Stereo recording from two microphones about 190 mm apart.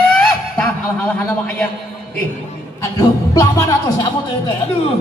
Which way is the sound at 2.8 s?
20° left (ahead or behind).